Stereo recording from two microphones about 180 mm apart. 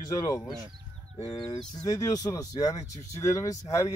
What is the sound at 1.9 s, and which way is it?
Speech, 20° left (ahead or behind).